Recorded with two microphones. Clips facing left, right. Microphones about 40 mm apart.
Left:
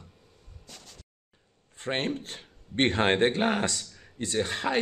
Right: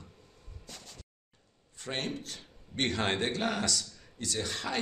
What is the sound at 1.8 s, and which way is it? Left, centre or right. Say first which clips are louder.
A man's voice: left 6 dB; left.